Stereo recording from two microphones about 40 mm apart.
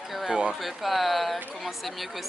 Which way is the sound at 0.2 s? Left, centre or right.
Centre.